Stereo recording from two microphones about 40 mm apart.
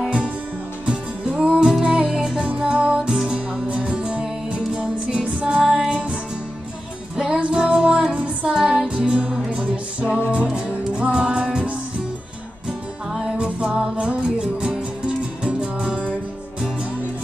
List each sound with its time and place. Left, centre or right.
0.8 s music: right
7.2 s music: right